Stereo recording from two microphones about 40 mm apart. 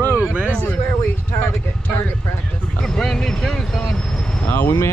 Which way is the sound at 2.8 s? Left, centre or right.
Centre.